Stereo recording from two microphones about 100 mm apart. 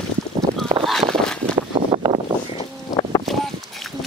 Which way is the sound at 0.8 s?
Centre (ahead or behind).